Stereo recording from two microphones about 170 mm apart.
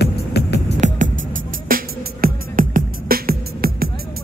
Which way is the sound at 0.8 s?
45° right (ahead or behind).